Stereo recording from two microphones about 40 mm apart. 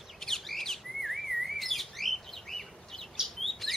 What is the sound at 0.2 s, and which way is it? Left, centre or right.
Bird, centre.